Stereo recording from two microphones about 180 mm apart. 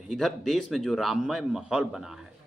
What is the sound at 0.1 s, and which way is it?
A man's voice, centre (ahead or behind).